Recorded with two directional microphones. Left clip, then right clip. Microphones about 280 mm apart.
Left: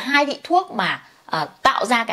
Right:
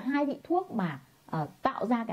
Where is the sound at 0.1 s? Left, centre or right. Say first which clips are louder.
Left 12 dB; centre.